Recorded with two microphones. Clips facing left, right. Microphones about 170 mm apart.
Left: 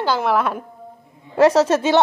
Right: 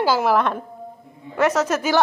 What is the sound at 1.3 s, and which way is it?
Speech, 30° left (ahead or behind).